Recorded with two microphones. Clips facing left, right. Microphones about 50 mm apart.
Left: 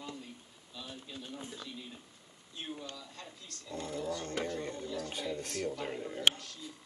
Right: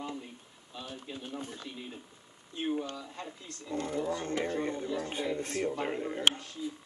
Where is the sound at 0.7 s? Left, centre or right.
Right.